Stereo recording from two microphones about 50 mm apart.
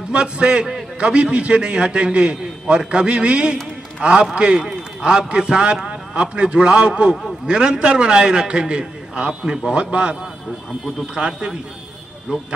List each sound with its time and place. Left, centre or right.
0.1 s a man's voice: centre